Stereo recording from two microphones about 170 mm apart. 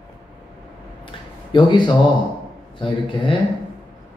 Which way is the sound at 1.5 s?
25° left (ahead or behind).